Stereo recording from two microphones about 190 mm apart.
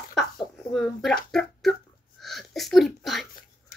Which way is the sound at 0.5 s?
Centre (ahead or behind).